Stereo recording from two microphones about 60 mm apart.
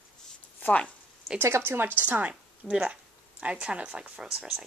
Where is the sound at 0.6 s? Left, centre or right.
Left.